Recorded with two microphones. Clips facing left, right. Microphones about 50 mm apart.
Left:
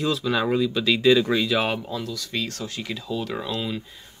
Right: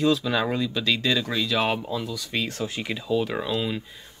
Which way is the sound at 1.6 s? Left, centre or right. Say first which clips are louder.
Right 1 dB; centre.